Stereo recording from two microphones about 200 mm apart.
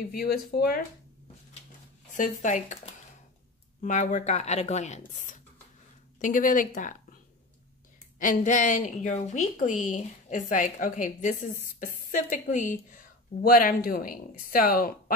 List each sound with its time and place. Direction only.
0.2 s speech: 50° left (ahead or behind)
2.1 s a woman's voice: 40° left (ahead or behind)
8.2 s a woman's voice: 40° left (ahead or behind)